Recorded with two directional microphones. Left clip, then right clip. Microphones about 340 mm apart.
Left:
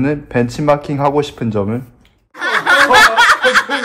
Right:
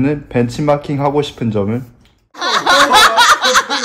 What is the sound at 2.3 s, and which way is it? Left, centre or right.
Snicker, centre.